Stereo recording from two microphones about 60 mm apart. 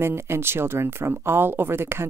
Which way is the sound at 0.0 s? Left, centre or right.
Right.